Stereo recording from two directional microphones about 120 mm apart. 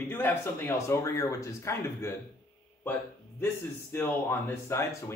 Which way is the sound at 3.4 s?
20° left (ahead or behind).